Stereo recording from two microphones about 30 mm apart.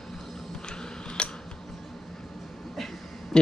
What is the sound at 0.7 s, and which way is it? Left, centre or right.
Tick-tock, left.